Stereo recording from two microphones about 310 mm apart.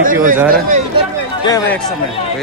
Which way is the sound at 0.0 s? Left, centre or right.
Right.